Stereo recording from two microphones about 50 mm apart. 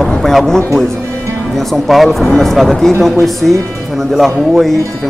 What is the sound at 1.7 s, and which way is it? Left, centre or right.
Speech, centre.